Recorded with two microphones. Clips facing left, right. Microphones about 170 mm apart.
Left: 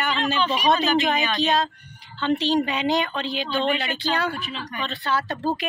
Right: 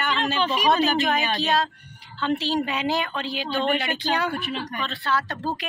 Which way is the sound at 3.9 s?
15° right (ahead or behind).